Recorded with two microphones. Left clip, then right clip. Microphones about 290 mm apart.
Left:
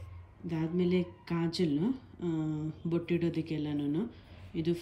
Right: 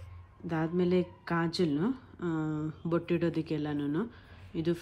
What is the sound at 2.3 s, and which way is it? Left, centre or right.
Speech, centre.